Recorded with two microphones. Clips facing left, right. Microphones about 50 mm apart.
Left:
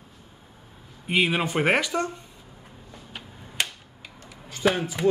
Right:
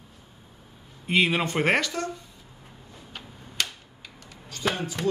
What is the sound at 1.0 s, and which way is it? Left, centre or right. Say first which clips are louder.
Speech: even; centre.